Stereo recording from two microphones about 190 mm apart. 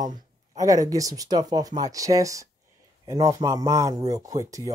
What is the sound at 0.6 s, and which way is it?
Speech, 20° right (ahead or behind).